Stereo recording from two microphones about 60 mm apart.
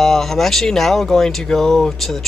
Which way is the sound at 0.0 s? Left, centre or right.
Centre.